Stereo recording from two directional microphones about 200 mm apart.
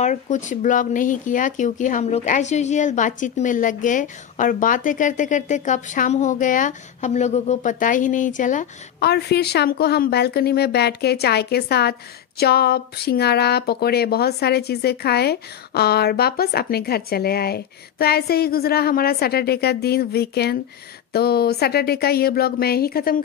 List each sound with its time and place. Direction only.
0.0 s speech: 40° left (ahead or behind)
9.0 s a woman's voice: 55° left (ahead or behind)